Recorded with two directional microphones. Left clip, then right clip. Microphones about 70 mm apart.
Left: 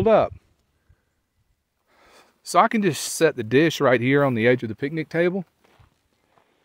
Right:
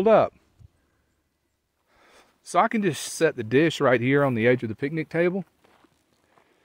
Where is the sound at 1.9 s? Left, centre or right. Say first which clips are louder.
Left 2 dB; left.